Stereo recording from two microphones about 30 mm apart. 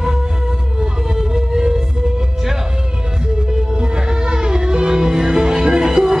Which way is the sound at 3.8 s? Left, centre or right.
Right.